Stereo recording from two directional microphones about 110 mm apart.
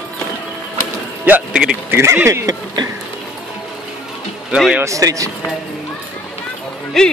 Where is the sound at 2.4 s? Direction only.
40° right (ahead or behind).